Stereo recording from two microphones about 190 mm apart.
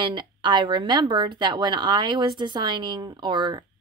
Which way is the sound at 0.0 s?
25° right (ahead or behind).